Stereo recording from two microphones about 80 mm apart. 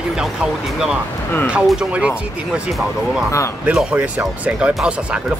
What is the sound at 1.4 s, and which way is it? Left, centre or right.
Speech, centre.